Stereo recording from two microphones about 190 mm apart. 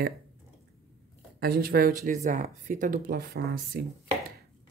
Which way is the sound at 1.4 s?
50° right (ahead or behind).